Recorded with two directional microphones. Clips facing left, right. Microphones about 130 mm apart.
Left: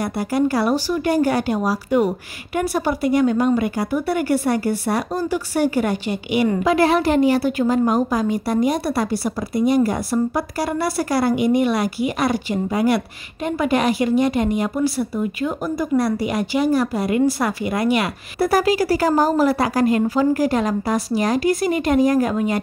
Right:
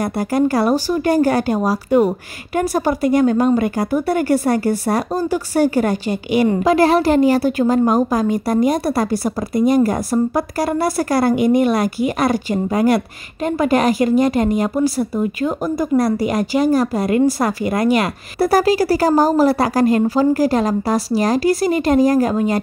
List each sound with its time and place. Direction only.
0.0 s a woman's voice: 45° right (ahead or behind)